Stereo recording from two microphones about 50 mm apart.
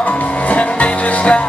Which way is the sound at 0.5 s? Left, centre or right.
Left.